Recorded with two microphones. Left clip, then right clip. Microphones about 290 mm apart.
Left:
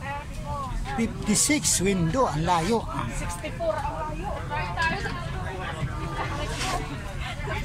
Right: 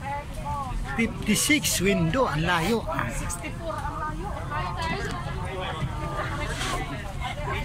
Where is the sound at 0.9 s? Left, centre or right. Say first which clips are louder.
Right 1 dB; centre.